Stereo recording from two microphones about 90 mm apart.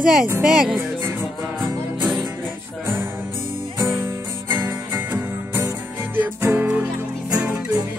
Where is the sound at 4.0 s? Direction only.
25° right (ahead or behind).